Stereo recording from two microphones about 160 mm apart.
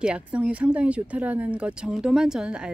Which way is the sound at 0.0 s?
5° right (ahead or behind).